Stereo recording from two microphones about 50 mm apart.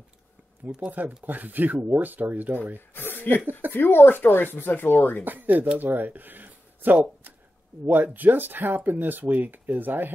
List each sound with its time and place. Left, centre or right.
0.7 s speech: right
2.9 s speech: left
5.2 s speech: right